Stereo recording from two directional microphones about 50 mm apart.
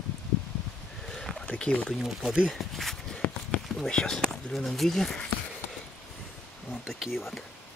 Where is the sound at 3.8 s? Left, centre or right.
Centre.